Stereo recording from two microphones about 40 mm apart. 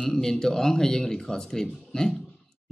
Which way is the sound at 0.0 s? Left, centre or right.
Centre.